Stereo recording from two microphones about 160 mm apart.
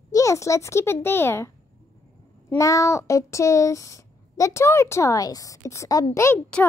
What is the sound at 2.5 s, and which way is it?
A child's voice, 20° left (ahead or behind).